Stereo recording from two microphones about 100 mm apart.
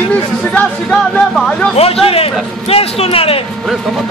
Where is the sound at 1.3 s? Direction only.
Centre (ahead or behind).